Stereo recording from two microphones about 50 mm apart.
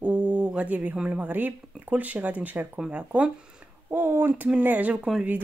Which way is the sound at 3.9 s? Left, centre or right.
Right.